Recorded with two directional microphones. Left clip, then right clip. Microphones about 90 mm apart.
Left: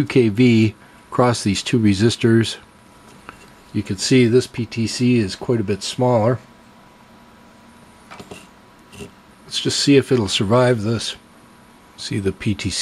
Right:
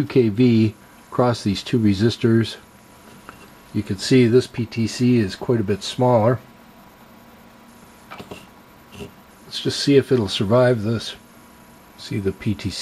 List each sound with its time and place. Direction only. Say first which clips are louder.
0.0 s speech: left 2 dB; 30° left (ahead or behind)
3.7 s speech: left 1 dB; 20° left (ahead or behind)
8.1 s a sound: right 1 dB; 10° left (ahead or behind)
9.5 s speech: left 2 dB; 35° left (ahead or behind)